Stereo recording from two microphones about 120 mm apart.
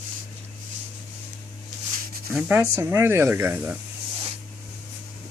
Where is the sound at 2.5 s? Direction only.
20° right (ahead or behind).